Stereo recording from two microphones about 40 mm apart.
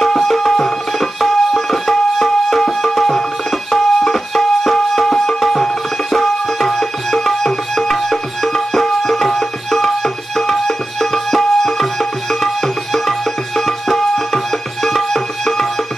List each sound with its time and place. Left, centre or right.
0.1 s music: centre
3.7 s music: centre
6.1 s tabla: centre
10.4 s music: centre